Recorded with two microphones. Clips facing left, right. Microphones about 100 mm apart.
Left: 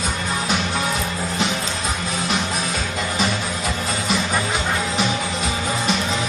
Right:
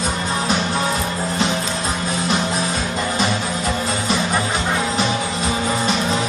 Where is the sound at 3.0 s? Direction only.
5° right (ahead or behind).